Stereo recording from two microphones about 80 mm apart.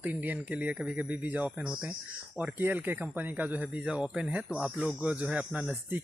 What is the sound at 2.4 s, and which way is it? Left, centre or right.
Speech, right.